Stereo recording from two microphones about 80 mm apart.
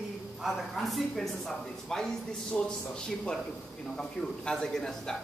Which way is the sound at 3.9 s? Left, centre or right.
Centre.